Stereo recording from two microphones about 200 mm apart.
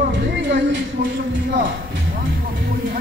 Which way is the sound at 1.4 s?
55° right (ahead or behind).